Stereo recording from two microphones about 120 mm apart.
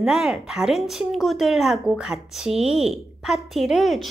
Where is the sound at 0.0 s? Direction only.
5° right (ahead or behind).